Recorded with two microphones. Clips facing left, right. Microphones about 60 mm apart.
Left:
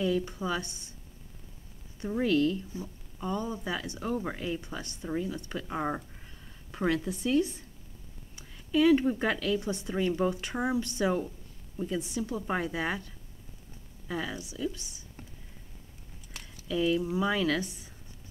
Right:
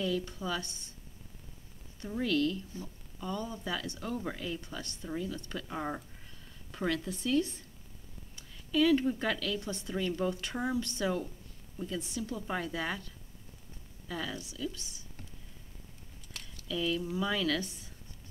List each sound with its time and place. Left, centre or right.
0.0 s speech: left
2.0 s speech: left
16.6 s speech: left